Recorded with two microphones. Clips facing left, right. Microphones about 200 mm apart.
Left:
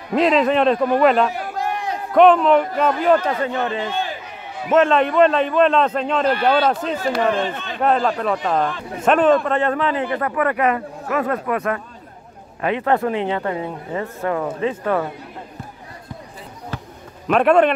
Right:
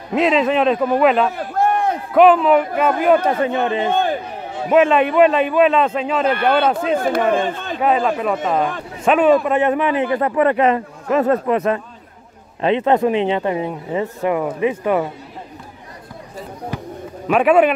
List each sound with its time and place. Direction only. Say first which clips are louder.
0.1 s a man's voice: even; centre (ahead or behind)
1.6 s a sound: right 8 dB; 55° right (ahead or behind)
2.1 s a man's voice: right 1 dB; 5° right (ahead or behind)
3.8 s a sound: right 7 dB; 55° right (ahead or behind)
4.6 s a man's voice: right 2 dB; 10° right (ahead or behind)
6.2 s speech: right 1 dB; 55° right (ahead or behind)
7.8 s a man's voice: right 1 dB; 5° right (ahead or behind)
17.3 s a man's voice: right 1 dB; 5° right (ahead or behind)